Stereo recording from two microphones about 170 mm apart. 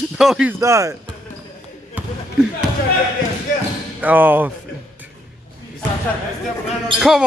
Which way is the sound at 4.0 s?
10° right (ahead or behind).